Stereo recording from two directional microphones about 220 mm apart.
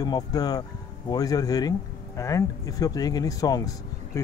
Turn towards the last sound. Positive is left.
turn(degrees=15)  # may be behind; listen again after turning